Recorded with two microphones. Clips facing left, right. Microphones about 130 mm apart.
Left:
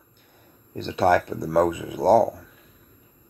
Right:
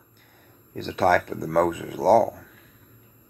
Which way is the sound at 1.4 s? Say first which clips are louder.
Left 1 dB; 25° left (ahead or behind).